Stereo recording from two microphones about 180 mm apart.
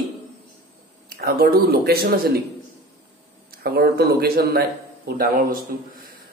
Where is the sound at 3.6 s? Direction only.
60° right (ahead or behind).